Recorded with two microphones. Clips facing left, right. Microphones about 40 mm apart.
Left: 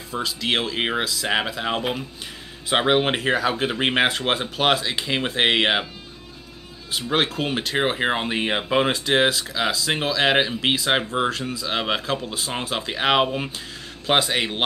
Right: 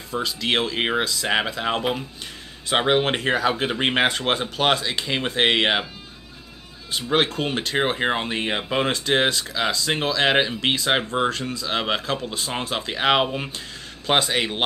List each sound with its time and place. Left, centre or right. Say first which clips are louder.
0.1 s speech: right 1 dB; centre
6.9 s speech: right 1 dB; centre